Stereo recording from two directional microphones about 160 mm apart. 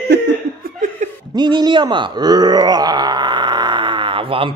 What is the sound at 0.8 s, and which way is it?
Laughter, 50° right (ahead or behind).